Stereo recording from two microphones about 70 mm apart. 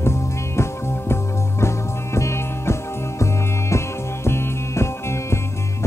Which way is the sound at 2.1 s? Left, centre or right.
Left.